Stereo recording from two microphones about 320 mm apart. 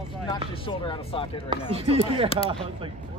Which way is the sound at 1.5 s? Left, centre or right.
Centre.